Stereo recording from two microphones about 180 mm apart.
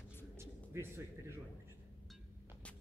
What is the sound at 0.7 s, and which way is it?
Speech, 15° right (ahead or behind).